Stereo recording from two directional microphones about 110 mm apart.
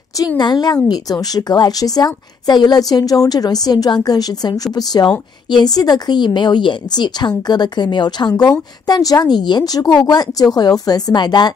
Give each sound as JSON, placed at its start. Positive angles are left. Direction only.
{"t": 0.4, "sound": "a woman's voice", "side_deg": 40}